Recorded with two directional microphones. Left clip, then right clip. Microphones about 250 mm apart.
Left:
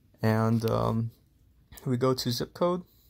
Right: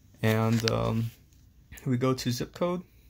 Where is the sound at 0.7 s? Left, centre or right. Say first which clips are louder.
Left 2 dB; centre.